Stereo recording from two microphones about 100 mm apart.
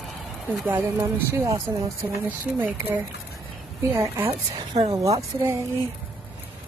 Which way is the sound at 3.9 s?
25° right (ahead or behind).